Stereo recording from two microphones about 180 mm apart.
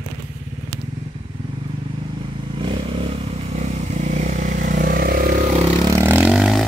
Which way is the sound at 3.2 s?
35° right (ahead or behind).